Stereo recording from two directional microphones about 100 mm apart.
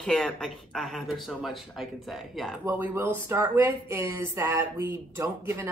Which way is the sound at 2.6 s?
25° right (ahead or behind).